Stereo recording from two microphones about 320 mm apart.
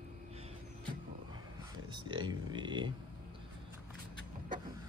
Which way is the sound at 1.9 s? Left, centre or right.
Centre.